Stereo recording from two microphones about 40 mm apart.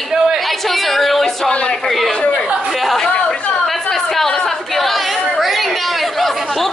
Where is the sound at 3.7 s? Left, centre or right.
Centre.